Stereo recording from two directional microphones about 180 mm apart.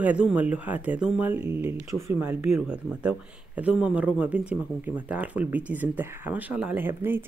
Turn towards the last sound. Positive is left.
turn(degrees=-10)  # may be behind; listen again after turning